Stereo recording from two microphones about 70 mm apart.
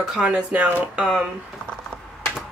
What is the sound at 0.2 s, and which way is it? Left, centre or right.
Speech, centre.